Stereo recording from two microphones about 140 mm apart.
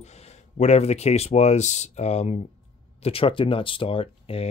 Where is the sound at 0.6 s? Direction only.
50° left (ahead or behind).